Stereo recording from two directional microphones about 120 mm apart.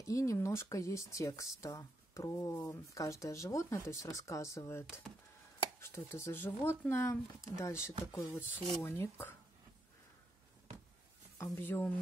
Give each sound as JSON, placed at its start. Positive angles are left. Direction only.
{"t": 0.0, "sound": "speech", "side_deg": 25}
{"t": 11.3, "sound": "speech", "side_deg": 20}